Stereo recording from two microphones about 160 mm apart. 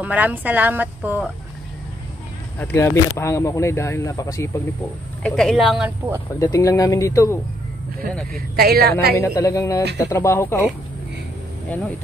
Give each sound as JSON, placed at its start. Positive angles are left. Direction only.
{"t": 0.0, "sound": "speech", "side_deg": -10}
{"t": 2.6, "sound": "speech", "side_deg": 15}
{"t": 5.2, "sound": "speech", "side_deg": 5}
{"t": 6.4, "sound": "speech", "side_deg": 20}
{"t": 8.3, "sound": "speech", "side_deg": -70}
{"t": 9.2, "sound": "speech", "side_deg": 20}